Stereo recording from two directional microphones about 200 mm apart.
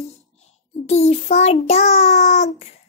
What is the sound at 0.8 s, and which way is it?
Child singing, 35° left (ahead or behind).